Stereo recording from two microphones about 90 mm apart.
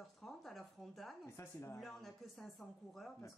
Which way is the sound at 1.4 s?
30° left (ahead or behind).